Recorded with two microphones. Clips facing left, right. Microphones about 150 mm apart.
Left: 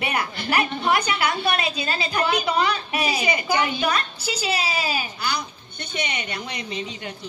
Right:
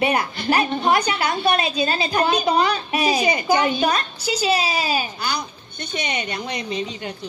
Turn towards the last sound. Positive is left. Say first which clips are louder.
# right 4 dB
turn(degrees=-35)  # may be behind; listen again after turning